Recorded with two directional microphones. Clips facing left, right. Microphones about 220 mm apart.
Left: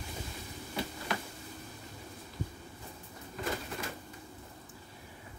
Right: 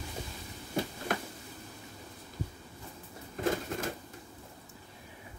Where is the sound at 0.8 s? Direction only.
50° right (ahead or behind).